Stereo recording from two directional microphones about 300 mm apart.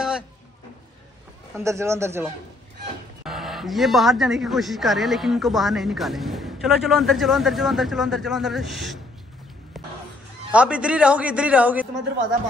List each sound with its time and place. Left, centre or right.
1.6 s speech: centre
3.3 s speech: centre
9.8 s a sound: centre
10.5 s speech: centre